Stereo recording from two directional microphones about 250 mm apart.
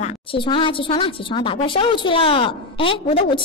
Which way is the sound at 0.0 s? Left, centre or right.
Centre.